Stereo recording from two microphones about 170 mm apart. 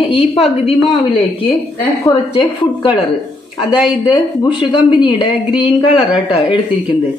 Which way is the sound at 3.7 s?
5° right (ahead or behind).